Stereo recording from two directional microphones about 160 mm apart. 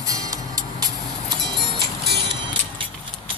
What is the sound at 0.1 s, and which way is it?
Music, 20° right (ahead or behind).